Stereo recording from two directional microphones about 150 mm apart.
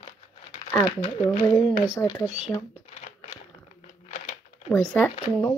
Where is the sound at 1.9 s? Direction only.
25° left (ahead or behind).